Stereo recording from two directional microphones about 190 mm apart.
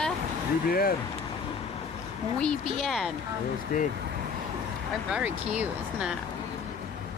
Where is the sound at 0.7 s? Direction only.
50° left (ahead or behind).